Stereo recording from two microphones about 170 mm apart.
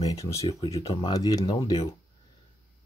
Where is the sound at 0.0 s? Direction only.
20° left (ahead or behind).